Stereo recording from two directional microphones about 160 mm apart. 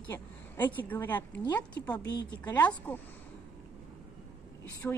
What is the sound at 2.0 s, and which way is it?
Speech, 90° left.